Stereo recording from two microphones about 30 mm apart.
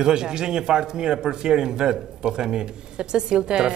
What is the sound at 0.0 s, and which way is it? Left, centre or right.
A man's voice, right.